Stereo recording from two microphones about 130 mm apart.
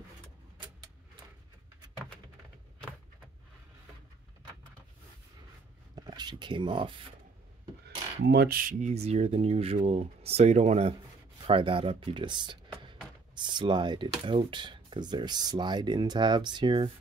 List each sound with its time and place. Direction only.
5.9 s speech: 35° right (ahead or behind)
8.5 s speech: 80° right; by 11.0 s 55° right (ahead or behind)
11.4 s speech: 40° right (ahead or behind)